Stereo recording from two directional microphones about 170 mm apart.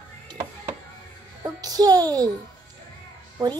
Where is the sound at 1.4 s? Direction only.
20° right (ahead or behind).